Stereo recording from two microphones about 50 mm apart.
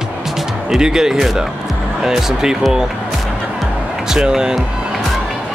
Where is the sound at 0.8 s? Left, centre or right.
Centre.